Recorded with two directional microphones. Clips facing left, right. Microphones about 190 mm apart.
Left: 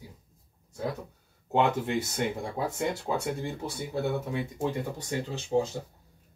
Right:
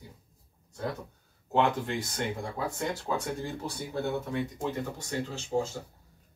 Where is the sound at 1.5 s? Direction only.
20° left (ahead or behind).